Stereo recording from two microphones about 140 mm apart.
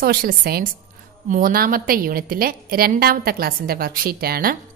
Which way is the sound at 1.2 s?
75° right (ahead or behind).